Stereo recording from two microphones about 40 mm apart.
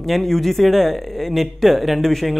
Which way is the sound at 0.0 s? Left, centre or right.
Centre.